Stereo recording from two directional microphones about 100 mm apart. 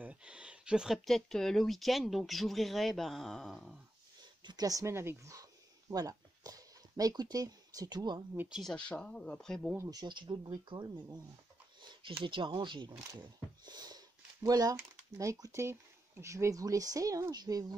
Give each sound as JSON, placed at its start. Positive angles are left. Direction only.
{"t": 0.0, "sound": "speech", "side_deg": -10}
{"t": 4.4, "sound": "speech", "side_deg": -45}
{"t": 8.5, "sound": "speech", "side_deg": 0}
{"t": 8.7, "sound": "speech", "side_deg": 10}
{"t": 9.8, "sound": "speech", "side_deg": -45}
{"t": 11.8, "sound": "a sound", "side_deg": -50}
{"t": 12.2, "sound": "speech", "side_deg": -55}